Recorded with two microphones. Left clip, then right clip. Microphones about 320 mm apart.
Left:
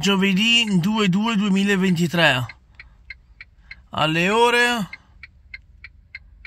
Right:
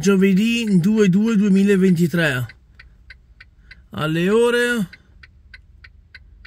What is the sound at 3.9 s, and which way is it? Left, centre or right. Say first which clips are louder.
Speech: even; centre.